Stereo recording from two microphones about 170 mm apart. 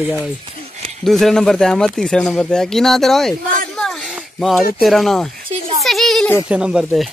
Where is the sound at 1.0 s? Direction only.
Centre (ahead or behind).